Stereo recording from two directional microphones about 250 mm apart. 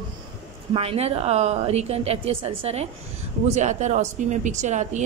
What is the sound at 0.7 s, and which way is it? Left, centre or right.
Speech, right.